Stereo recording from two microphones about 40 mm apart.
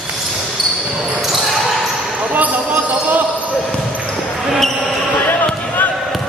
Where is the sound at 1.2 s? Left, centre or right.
Centre.